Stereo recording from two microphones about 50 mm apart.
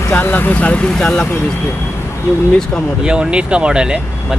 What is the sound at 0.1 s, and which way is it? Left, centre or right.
Speech, left.